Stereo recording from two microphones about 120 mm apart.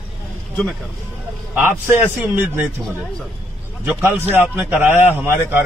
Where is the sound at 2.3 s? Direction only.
15° right (ahead or behind).